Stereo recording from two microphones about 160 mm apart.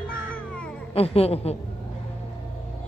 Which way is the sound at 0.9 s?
40° left (ahead or behind).